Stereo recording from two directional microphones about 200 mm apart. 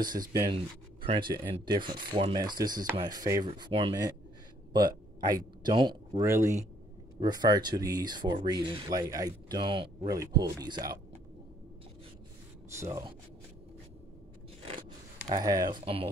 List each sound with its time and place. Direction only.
0.2 s speech: 20° right (ahead or behind)
12.7 s speech: 15° right (ahead or behind)
15.3 s speech: 20° right (ahead or behind)